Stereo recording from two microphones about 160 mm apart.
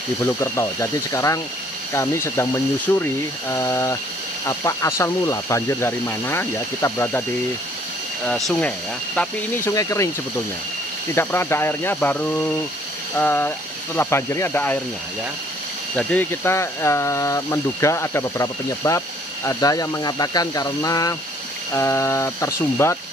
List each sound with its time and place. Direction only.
0.4 s speech: 20° left (ahead or behind)
8.3 s speech: 5° left (ahead or behind)
9.8 s speech: 20° left (ahead or behind)
11.1 s speech: 15° left (ahead or behind)
13.2 s speech: 15° left (ahead or behind)
16.0 s speech: 10° left (ahead or behind)